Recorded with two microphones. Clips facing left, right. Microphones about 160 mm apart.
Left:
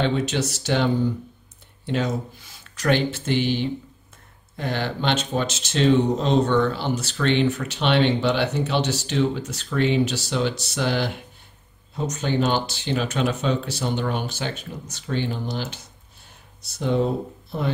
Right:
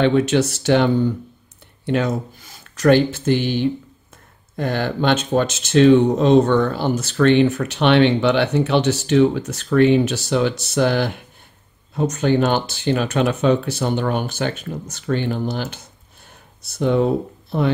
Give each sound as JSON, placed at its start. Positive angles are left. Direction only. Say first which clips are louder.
{"t": 0.0, "sound": "speech", "louder": "right 7 dB", "side_deg": -60}
{"t": 1.9, "sound": "speech", "louder": "right 4 dB", "side_deg": -55}
{"t": 4.6, "sound": "speech", "louder": "right 5 dB", "side_deg": -50}